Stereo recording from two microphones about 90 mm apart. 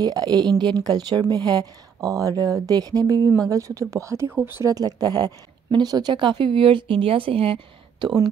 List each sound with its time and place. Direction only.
0.0 s a woman's voice: 45° right (ahead or behind); by 4.6 s 25° right (ahead or behind)
4.6 s speech: 45° right (ahead or behind); by 7.6 s 90° right